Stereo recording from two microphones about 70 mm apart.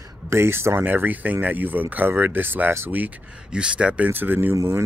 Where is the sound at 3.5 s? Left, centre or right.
Centre.